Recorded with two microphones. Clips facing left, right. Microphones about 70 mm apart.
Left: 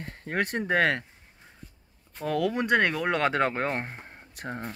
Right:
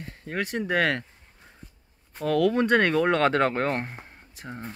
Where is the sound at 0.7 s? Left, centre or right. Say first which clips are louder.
Even; left.